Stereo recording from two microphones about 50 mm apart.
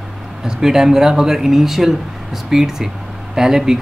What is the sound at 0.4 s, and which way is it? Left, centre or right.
Speech, centre.